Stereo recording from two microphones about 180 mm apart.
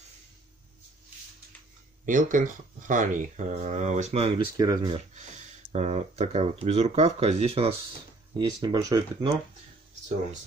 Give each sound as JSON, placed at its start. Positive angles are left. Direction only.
{"t": 2.0, "sound": "speech", "side_deg": -45}
{"t": 4.6, "sound": "speech", "side_deg": -20}
{"t": 4.9, "sound": "speech", "side_deg": -40}
{"t": 8.4, "sound": "speech", "side_deg": -25}